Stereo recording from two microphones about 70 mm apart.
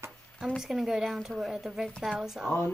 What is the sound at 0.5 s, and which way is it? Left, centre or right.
A woman's voice, centre.